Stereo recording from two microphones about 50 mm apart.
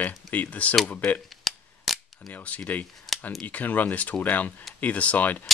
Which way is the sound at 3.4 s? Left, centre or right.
Left.